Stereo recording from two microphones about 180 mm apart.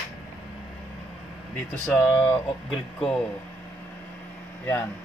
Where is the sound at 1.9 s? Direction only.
15° left (ahead or behind).